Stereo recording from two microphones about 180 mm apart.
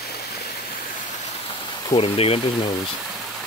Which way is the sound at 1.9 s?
30° left (ahead or behind).